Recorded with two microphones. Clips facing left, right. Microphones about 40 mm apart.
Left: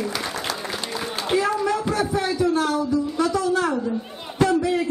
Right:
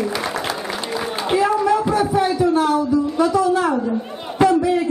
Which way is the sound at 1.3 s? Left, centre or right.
Centre.